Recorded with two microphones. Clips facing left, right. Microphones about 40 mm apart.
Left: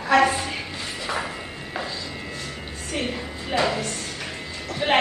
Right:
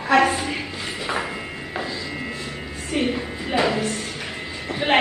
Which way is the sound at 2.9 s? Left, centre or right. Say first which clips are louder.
Right 5 dB; centre.